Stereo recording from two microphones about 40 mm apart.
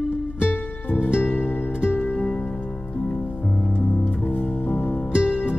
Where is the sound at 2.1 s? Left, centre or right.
Left.